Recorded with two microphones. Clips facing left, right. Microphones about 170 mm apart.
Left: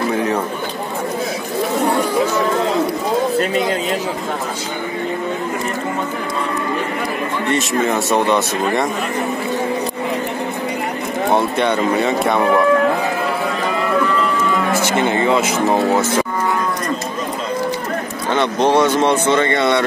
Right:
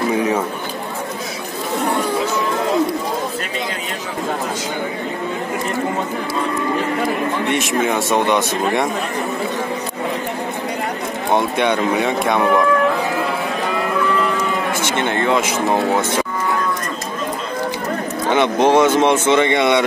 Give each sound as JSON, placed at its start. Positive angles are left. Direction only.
{"t": 11.5, "sound": "speech", "side_deg": 0}
{"t": 15.0, "sound": "speech", "side_deg": 5}
{"t": 18.3, "sound": "speech", "side_deg": -15}